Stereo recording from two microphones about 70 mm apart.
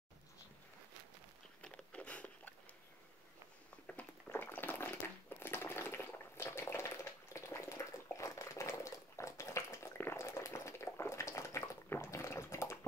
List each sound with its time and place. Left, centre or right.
1.6 s biting: centre
3.8 s a sound: left
5.4 s water: left